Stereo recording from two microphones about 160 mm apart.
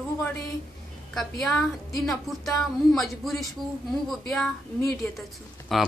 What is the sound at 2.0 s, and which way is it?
Speech, centre (ahead or behind).